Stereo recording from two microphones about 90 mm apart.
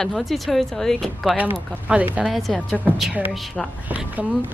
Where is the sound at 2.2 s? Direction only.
Centre (ahead or behind).